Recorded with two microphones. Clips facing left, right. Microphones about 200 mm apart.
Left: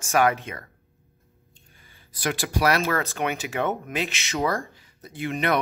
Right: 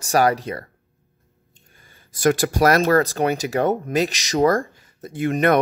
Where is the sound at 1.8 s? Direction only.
50° right (ahead or behind).